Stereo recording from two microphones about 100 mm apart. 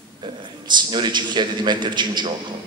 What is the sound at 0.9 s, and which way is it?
A man's voice, 50° right (ahead or behind).